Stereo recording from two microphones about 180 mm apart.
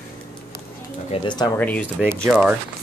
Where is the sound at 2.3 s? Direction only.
5° right (ahead or behind).